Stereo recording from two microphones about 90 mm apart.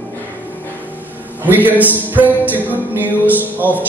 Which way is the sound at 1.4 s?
20° right (ahead or behind).